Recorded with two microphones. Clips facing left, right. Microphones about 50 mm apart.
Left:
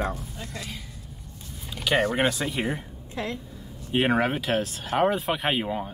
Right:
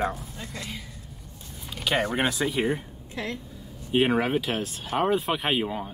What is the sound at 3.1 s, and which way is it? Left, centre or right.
Speech, left.